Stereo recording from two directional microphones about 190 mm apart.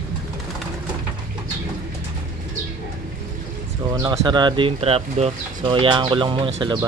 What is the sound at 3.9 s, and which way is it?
Speech, 20° right (ahead or behind).